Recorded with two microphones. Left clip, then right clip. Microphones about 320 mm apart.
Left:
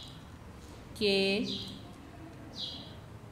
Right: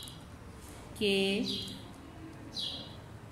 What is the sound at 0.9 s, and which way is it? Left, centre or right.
Speech, left.